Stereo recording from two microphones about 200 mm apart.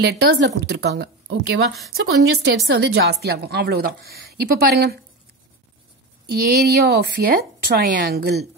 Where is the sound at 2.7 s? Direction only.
55° right (ahead or behind).